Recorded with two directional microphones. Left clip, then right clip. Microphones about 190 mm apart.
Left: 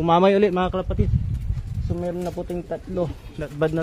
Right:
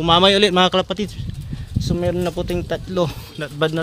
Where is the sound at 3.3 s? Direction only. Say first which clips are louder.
Right 3 dB; centre (ahead or behind).